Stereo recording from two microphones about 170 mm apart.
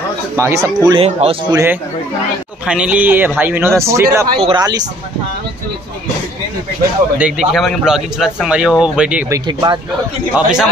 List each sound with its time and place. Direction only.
0.4 s speech: 15° right (ahead or behind)
0.8 s speech: 35° right (ahead or behind)
1.5 s speech: 15° right (ahead or behind)
7.2 s speech: 5° right (ahead or behind)
9.3 s speech: 25° right (ahead or behind)
10.3 s speech: 5° right (ahead or behind)